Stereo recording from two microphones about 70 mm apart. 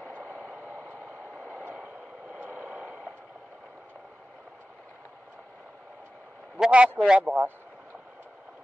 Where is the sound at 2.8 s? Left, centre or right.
Centre.